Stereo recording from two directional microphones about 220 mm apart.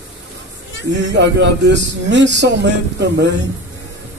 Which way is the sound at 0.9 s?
55° right (ahead or behind).